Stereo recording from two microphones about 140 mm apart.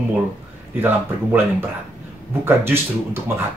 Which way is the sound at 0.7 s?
15° right (ahead or behind).